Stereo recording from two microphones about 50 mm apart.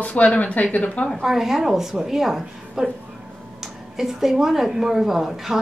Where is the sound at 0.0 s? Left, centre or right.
Left.